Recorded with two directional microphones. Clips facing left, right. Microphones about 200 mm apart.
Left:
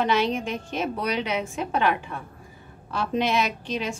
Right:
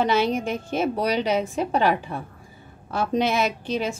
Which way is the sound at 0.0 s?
45° right (ahead or behind).